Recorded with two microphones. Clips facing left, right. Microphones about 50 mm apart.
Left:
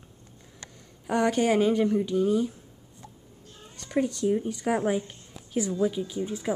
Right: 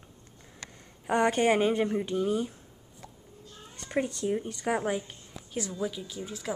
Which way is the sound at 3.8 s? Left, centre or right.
Centre.